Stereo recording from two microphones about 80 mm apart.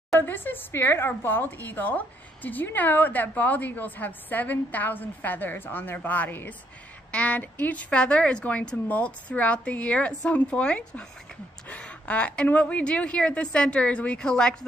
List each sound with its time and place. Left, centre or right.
0.2 s speech: left